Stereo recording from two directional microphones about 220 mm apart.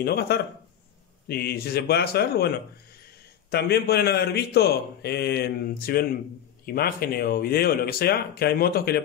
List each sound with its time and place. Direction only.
0.0 s a man's voice: 45° left (ahead or behind)